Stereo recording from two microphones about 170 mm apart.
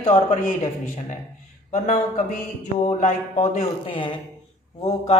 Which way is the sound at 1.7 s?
50° left (ahead or behind).